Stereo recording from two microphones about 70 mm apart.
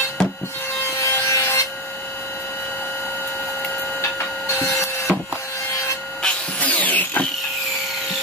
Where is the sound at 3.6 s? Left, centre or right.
Left.